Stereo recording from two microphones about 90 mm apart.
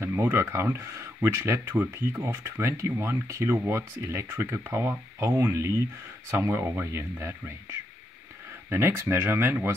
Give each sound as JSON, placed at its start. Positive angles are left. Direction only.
{"t": 0.0, "sound": "speech", "side_deg": -25}
{"t": 8.6, "sound": "speech", "side_deg": -30}